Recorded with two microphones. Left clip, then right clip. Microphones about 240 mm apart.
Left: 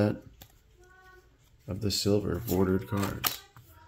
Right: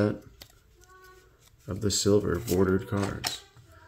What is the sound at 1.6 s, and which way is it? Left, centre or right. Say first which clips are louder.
Speech: right 3 dB; centre.